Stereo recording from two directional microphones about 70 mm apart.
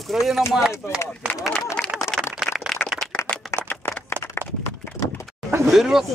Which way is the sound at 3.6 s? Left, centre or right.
Left.